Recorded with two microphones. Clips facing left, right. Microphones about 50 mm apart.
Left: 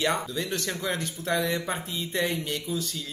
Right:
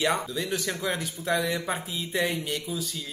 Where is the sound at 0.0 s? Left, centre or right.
Centre.